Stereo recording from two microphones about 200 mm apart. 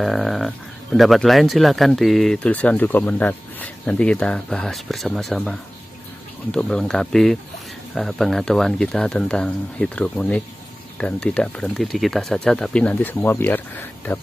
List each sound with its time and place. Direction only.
0.0 s speech: centre (ahead or behind)